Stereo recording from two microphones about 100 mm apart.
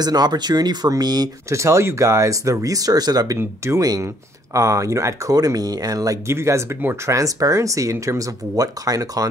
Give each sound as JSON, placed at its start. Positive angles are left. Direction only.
{"t": 0.0, "sound": "speech", "side_deg": -45}
{"t": 1.5, "sound": "speech", "side_deg": -30}
{"t": 3.3, "sound": "speech", "side_deg": -30}